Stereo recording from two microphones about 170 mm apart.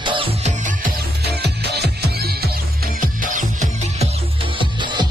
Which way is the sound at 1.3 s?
75° right (ahead or behind).